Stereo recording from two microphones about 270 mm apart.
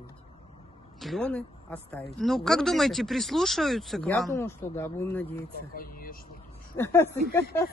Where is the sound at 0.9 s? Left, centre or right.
Centre.